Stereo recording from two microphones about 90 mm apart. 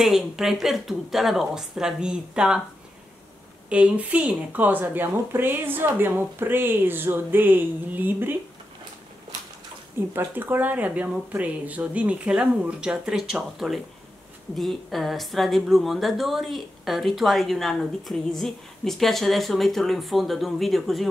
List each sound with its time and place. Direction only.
0.0 s speech: 5° right (ahead or behind)
3.7 s speech: 15° right (ahead or behind)
9.9 s speech: 25° right (ahead or behind); by 21.1 s centre (ahead or behind)